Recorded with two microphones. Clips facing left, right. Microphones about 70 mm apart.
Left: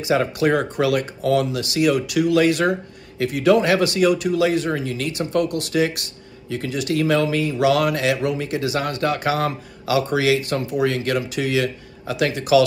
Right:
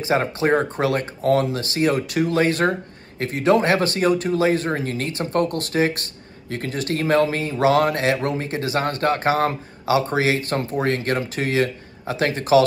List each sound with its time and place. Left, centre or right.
0.0 s speech: right